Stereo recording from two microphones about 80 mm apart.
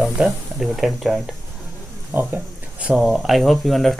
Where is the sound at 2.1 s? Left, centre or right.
Centre.